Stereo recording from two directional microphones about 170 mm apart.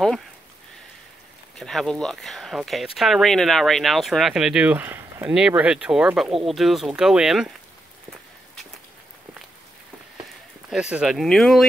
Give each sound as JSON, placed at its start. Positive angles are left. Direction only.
{"t": 1.6, "sound": "speech", "side_deg": 0}
{"t": 10.7, "sound": "speech", "side_deg": -5}